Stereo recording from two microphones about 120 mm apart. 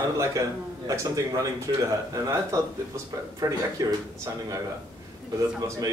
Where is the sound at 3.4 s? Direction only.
30° right (ahead or behind).